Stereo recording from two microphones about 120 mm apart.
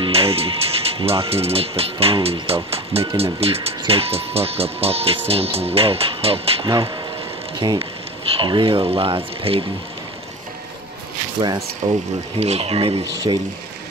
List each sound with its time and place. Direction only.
0.0 s speech: 55° right (ahead or behind)
8.4 s speech: 45° right (ahead or behind)
11.8 s speech: 60° right (ahead or behind)
13.3 s speech: 40° right (ahead or behind)